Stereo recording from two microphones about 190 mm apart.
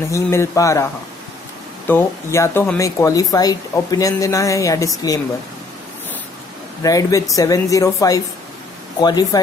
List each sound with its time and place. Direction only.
0.1 s speech: 15° left (ahead or behind)
1.9 s speech: 15° left (ahead or behind)
6.8 s speech: 20° left (ahead or behind)